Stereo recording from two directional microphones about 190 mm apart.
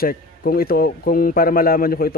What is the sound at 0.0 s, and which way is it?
Speech, 50° left (ahead or behind).